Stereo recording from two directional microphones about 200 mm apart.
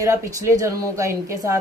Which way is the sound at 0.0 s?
15° right (ahead or behind).